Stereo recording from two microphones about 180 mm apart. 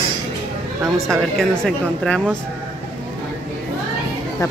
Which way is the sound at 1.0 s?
Centre (ahead or behind).